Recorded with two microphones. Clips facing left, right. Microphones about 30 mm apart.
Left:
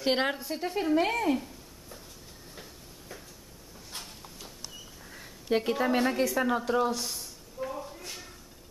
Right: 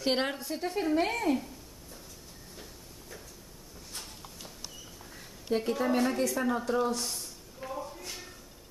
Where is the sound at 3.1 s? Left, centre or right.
Left.